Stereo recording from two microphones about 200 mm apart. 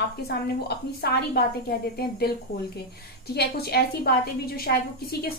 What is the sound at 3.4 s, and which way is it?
A woman's voice, 50° left (ahead or behind).